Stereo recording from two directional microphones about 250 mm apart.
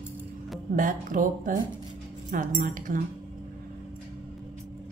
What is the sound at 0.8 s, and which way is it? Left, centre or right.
A woman's voice, right.